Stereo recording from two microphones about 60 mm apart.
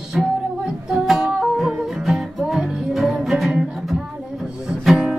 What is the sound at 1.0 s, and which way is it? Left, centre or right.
Music, centre.